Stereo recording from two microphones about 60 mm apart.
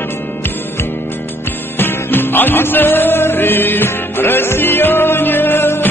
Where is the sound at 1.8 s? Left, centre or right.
Left.